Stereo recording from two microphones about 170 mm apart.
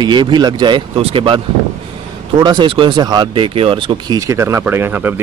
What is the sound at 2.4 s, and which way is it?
Speech, 25° right (ahead or behind).